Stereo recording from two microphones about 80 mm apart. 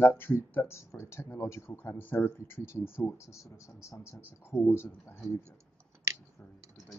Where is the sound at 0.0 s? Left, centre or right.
Left.